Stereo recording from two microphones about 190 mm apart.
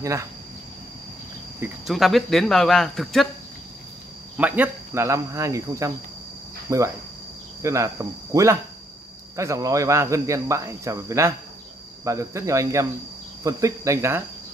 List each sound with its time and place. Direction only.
0.0 s speech: 15° right (ahead or behind)
1.9 s speech: centre (ahead or behind)
4.4 s speech: 10° right (ahead or behind)